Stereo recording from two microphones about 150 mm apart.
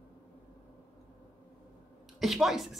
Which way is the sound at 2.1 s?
Centre (ahead or behind).